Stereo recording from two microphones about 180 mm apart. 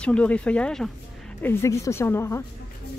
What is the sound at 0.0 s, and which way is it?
Speech, 5° left (ahead or behind).